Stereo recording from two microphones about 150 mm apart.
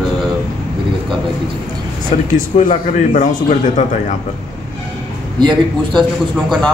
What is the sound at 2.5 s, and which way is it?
Speech, 55° left (ahead or behind).